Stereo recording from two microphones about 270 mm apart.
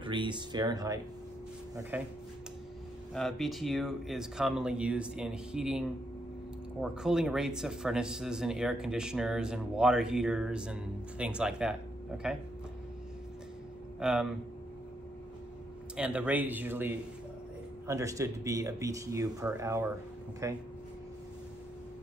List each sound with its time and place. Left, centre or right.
0.0 s speech: centre
3.2 s speech: centre
13.9 s speech: centre
16.0 s speech: centre